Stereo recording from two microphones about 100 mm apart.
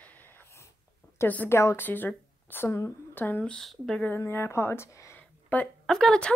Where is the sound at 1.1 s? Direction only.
20° left (ahead or behind).